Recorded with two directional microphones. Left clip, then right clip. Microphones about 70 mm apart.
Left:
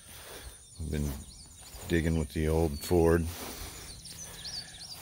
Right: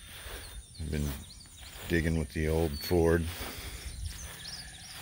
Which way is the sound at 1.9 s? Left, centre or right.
Left.